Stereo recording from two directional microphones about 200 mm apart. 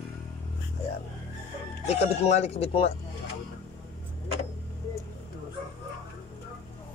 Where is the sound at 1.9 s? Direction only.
30° left (ahead or behind).